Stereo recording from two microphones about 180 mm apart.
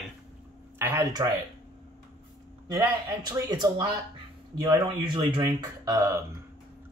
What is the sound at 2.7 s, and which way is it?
Speech, 20° right (ahead or behind).